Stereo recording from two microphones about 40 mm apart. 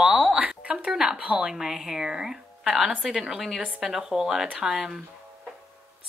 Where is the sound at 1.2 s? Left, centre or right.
Right.